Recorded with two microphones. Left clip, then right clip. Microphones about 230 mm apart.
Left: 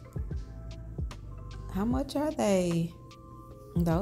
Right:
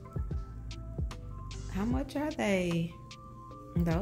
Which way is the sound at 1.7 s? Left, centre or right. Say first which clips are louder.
Left 4 dB; centre.